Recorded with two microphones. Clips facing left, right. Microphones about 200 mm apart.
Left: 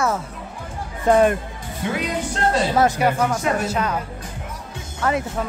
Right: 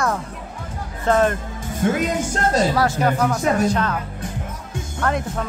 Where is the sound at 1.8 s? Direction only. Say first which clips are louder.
Right 4 dB; 45° right (ahead or behind).